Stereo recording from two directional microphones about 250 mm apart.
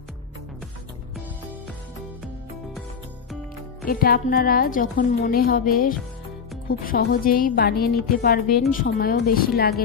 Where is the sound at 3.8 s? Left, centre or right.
Left.